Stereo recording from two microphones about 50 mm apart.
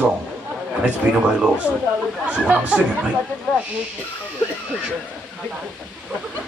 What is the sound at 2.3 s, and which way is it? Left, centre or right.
Speech, right.